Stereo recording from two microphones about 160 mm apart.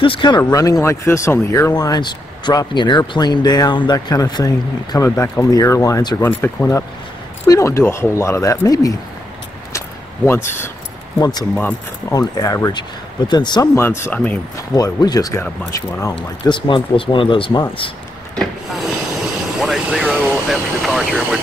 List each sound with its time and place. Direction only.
0.0 s speech: 30° left (ahead or behind)
9.7 s a sound: 15° left (ahead or behind)
11.1 s speech: 25° left (ahead or behind)
13.7 s speech: 15° left (ahead or behind)
14.8 s speech: 25° left (ahead or behind)
18.3 s a sound: centre (ahead or behind)
20.4 s speech: centre (ahead or behind)